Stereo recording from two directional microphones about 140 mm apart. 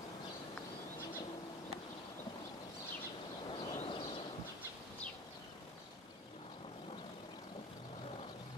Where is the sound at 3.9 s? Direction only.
40° left (ahead or behind).